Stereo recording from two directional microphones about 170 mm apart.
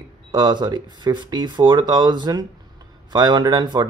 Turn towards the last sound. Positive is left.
turn(degrees=-25)  # may be behind; listen again after turning